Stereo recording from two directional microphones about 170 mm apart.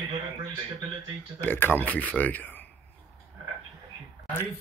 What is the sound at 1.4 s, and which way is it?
Speech, 10° left (ahead or behind).